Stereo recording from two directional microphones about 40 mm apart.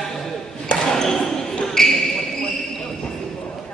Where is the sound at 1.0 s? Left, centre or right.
Centre.